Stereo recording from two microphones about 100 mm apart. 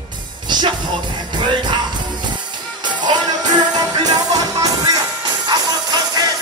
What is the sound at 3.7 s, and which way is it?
Music, 40° right (ahead or behind).